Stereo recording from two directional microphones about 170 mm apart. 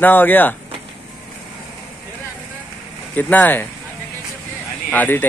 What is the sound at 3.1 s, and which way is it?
Speech, 10° left (ahead or behind).